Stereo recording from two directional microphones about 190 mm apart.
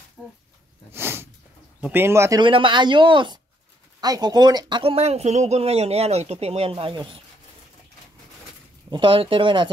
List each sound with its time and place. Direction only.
0.2 s speech: centre (ahead or behind)
0.9 s a sound: 10° right (ahead or behind)
1.8 s speech: 10° right (ahead or behind)
2.4 s speech: 25° right (ahead or behind)
8.9 s speech: 25° right (ahead or behind)